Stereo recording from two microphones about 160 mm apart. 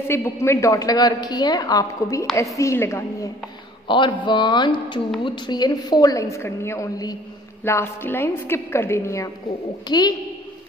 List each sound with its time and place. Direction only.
0.1 s a woman's voice: 15° left (ahead or behind)
3.8 s a woman's voice: 30° left (ahead or behind)